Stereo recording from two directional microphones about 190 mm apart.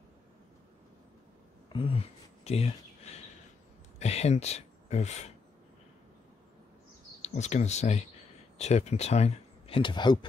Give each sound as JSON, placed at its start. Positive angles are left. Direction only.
{"t": 1.7, "sound": "speech", "side_deg": 30}
{"t": 7.2, "sound": "speech", "side_deg": 35}